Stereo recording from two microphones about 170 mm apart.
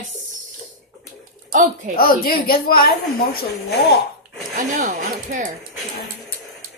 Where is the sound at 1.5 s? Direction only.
50° right (ahead or behind).